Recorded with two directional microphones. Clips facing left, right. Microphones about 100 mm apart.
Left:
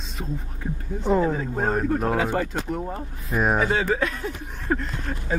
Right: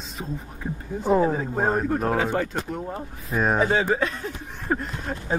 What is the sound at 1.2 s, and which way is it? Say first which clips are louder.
Speech: right 1 dB; 25° right (ahead or behind).